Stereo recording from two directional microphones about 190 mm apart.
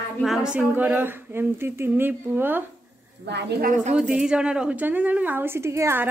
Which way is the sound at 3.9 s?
5° right (ahead or behind).